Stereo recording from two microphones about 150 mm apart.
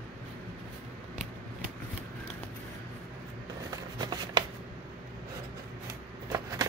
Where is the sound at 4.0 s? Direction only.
30° right (ahead or behind).